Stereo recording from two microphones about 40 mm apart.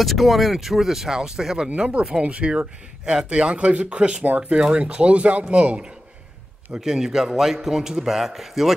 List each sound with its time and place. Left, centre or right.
0.0 s speech: centre
2.1 s speech: right
6.7 s speech: centre